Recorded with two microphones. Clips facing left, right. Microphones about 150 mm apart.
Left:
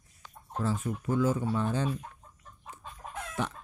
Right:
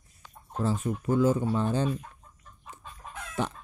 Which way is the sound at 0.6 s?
25° right (ahead or behind).